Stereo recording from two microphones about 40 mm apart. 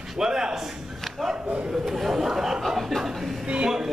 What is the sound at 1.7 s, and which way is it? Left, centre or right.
Speech, centre.